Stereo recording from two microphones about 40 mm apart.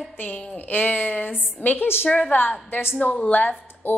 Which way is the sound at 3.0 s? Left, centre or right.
Left.